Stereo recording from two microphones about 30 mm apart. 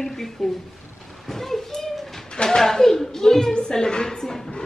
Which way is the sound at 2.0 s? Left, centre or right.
Centre.